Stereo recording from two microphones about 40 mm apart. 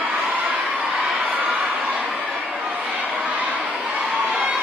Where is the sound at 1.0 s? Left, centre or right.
Right.